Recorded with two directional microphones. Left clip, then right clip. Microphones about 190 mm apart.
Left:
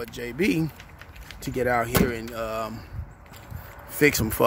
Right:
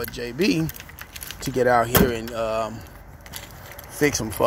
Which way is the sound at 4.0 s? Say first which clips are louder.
Left 1 dB; 35° left (ahead or behind).